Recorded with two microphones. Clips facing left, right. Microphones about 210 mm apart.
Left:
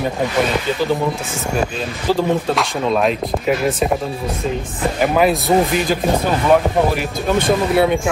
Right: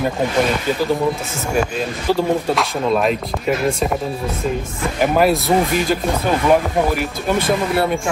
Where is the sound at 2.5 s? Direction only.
Centre (ahead or behind).